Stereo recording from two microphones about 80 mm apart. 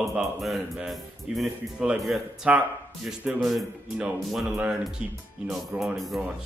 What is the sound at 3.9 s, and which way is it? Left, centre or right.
A man's voice, centre.